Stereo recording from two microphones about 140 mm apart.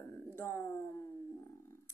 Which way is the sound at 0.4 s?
20° left (ahead or behind).